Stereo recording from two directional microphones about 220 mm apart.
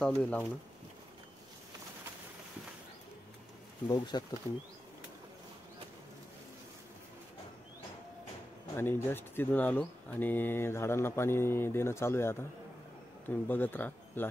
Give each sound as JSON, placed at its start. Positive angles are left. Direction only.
{"t": 0.0, "sound": "speech", "side_deg": 5}
{"t": 3.8, "sound": "speech", "side_deg": 20}
{"t": 8.7, "sound": "speech", "side_deg": 10}